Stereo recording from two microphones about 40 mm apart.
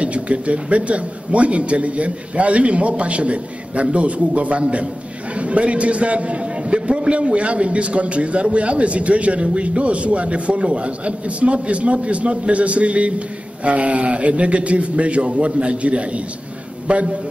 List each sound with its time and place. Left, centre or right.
0.0 s a man's voice: right